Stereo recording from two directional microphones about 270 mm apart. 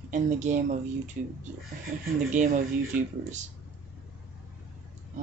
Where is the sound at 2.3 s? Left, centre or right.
Right.